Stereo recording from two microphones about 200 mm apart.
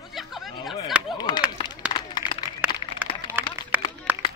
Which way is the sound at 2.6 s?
10° right (ahead or behind).